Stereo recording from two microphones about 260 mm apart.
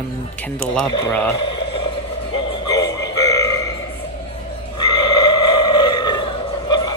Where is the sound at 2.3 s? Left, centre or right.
Centre.